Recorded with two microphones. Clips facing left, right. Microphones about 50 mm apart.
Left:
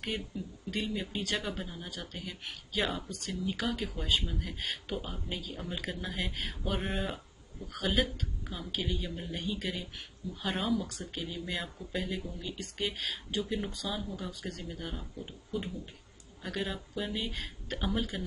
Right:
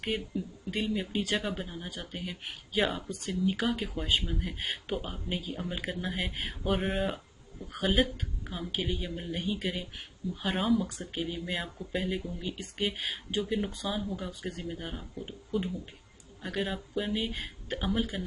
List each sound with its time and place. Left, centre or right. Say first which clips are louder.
0.1 s speech: right 4 dB; centre
10.9 s speech: right 4 dB; right
14.5 s speech: right 2 dB; centre